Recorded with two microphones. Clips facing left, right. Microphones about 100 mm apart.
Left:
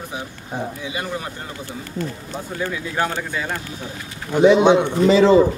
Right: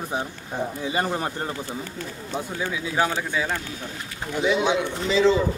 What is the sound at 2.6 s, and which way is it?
Speech, 10° right (ahead or behind).